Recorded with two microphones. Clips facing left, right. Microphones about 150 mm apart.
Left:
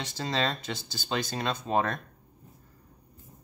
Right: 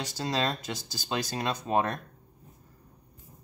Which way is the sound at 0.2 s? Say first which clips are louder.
Even; 10° right (ahead or behind).